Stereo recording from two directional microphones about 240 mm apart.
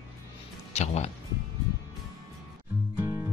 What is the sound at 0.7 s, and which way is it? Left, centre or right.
Speech, left.